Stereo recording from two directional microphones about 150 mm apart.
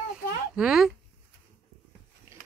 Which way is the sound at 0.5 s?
5° right (ahead or behind).